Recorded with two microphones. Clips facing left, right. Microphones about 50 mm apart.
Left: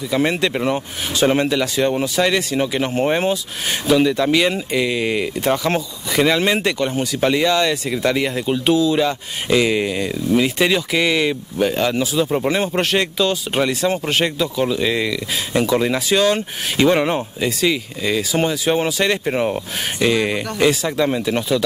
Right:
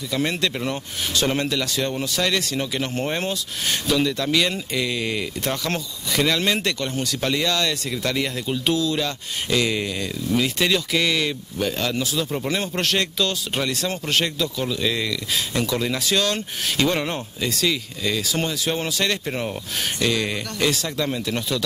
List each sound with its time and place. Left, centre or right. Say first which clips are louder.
0.1 s speech: left 5 dB; centre